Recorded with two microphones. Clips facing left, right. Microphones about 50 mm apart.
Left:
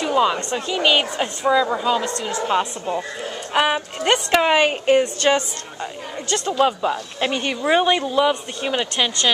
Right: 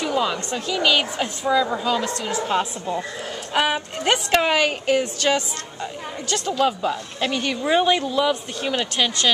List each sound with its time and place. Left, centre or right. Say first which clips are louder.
0.0 s a sound: left 4 dB; centre
0.7 s speech: left 1 dB; left; by 4.5 s centre
4.5 s speech: left 3 dB; left
6.3 s speech: left 2 dB; centre
8.3 s speech: left 1 dB; centre